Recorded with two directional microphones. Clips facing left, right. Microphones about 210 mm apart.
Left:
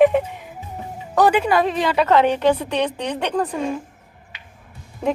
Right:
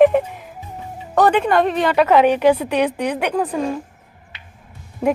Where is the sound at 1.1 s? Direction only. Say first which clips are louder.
Right 1 dB; 5° left (ahead or behind).